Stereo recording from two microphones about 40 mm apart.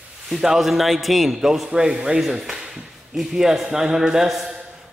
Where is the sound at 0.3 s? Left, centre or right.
Centre.